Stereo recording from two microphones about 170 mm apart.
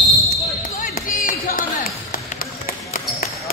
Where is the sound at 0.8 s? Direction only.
55° left (ahead or behind).